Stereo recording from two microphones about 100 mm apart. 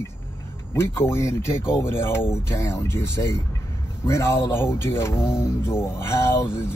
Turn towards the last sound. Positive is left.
turn(degrees=25)  # may be behind; listen again after turning